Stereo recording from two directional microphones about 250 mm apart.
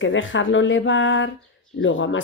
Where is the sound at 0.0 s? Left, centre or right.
Left.